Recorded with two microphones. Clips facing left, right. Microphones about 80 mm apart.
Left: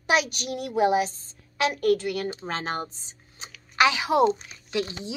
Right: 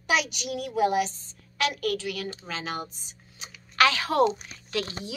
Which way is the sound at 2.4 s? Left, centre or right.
Left.